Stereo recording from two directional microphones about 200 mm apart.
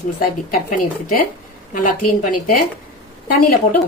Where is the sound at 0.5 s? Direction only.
45° left (ahead or behind).